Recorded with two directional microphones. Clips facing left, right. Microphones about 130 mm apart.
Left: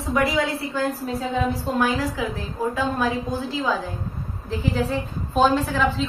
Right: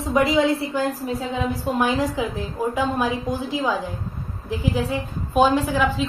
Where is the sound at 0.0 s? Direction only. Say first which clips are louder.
Right 3 dB; 20° right (ahead or behind).